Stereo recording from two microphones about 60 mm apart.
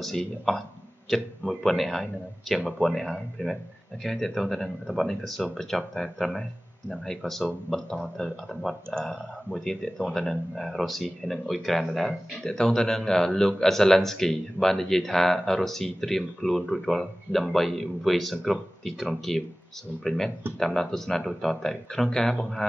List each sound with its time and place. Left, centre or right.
0.0 s speech: centre